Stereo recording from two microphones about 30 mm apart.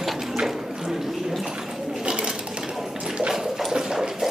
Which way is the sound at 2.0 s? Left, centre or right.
Right.